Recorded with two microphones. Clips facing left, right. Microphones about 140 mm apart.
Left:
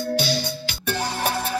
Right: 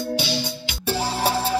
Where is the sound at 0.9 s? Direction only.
30° right (ahead or behind).